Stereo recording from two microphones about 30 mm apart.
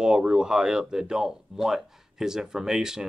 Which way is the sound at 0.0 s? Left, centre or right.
Centre.